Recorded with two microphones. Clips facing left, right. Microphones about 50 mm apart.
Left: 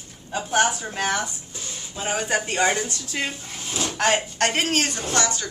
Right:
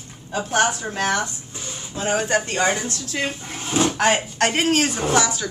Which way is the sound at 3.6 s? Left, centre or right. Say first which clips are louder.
Right 8 dB; right.